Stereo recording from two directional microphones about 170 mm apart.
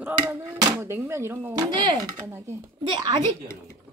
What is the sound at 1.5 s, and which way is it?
Speech, 25° right (ahead or behind).